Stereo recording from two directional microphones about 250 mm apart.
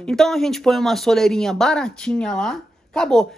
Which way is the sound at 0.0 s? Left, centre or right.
Centre.